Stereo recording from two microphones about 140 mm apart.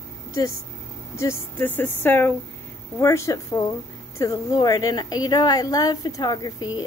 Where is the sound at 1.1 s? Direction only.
15° left (ahead or behind).